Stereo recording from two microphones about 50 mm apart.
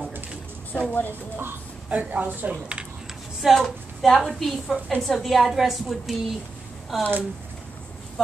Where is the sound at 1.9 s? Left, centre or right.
Right.